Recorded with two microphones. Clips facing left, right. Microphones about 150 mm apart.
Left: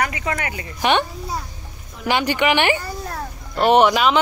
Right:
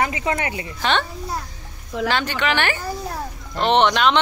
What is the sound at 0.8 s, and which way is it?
Speech, 15° left (ahead or behind).